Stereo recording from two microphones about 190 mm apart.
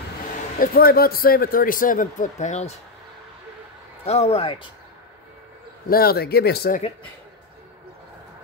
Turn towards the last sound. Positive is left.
turn(degrees=55)  # may be behind; listen again after turning